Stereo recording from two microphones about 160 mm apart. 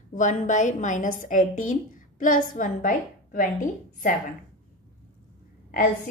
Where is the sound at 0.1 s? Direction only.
50° left (ahead or behind).